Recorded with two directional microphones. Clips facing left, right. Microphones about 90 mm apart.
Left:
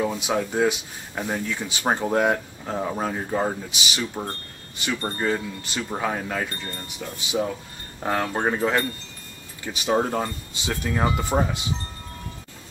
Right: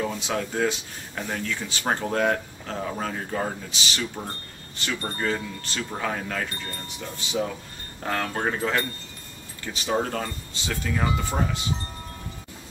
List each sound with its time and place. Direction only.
0.0 s speech: 15° left (ahead or behind)